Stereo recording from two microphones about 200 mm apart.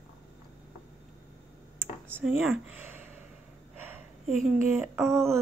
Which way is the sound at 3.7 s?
10° right (ahead or behind).